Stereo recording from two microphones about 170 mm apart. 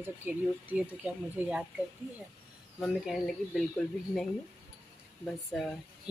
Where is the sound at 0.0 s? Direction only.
10° right (ahead or behind).